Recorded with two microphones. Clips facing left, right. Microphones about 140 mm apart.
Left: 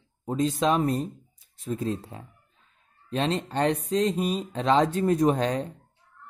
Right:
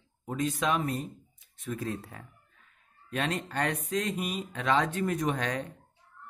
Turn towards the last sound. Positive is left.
turn(degrees=30)  # may be behind; listen again after turning